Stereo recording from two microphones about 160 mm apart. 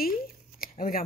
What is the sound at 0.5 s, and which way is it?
Shuffling cards, 60° left (ahead or behind).